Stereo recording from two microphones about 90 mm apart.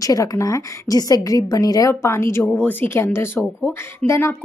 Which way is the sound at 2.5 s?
20° left (ahead or behind).